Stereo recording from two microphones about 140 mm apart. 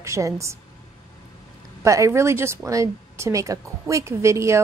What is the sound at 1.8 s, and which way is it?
A woman's voice, 20° right (ahead or behind).